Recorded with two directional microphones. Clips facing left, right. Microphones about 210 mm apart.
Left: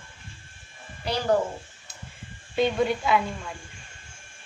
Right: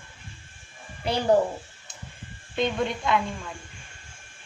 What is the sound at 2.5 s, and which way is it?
Speech, 5° left (ahead or behind).